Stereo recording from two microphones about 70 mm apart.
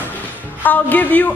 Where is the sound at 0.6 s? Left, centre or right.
Left.